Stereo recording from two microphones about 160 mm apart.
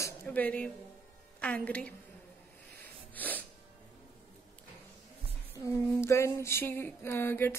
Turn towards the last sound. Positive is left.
turn(degrees=15)  # may be behind; listen again after turning